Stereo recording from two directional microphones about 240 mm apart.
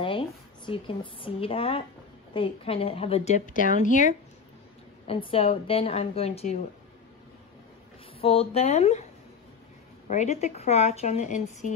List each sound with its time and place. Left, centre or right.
0.0 s a woman's voice: left
8.2 s a woman's voice: left
10.0 s a woman's voice: left